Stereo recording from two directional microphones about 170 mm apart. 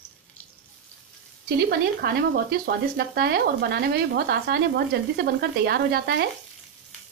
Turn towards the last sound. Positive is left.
turn(degrees=-65)  # may be behind; listen again after turning